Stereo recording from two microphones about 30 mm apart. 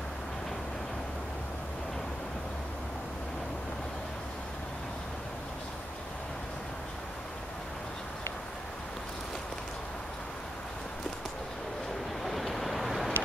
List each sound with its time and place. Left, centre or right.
12.2 s vehicle: centre